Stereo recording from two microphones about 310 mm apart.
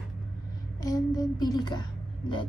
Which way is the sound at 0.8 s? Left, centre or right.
Centre.